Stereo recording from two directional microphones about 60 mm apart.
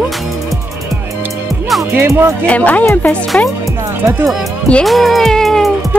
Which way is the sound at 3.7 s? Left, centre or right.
Right.